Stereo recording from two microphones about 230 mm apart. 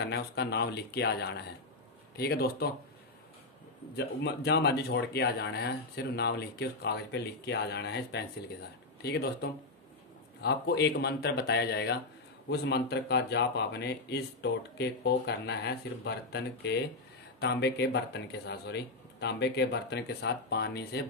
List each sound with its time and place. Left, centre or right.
0.0 s speech: left
3.9 s speech: left